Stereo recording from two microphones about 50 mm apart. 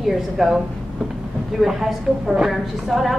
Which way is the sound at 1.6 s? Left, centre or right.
Centre.